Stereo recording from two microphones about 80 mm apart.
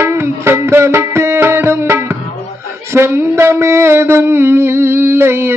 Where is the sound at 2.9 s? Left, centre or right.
Right.